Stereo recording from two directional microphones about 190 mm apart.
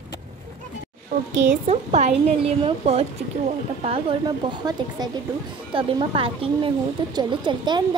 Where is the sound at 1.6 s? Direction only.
35° right (ahead or behind).